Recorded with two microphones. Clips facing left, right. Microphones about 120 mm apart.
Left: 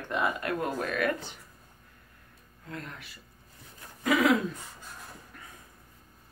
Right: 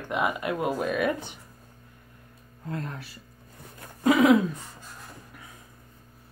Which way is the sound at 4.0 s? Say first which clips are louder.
Right 5 dB; 25° right (ahead or behind).